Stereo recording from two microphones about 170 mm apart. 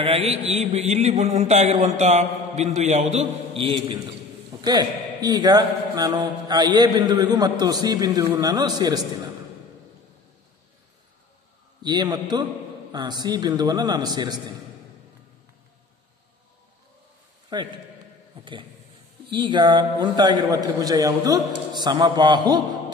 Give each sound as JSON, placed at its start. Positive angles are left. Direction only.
{"t": 0.0, "sound": "a man's voice", "side_deg": -35}
{"t": 11.8, "sound": "a man's voice", "side_deg": -25}
{"t": 17.5, "sound": "a man's voice", "side_deg": -25}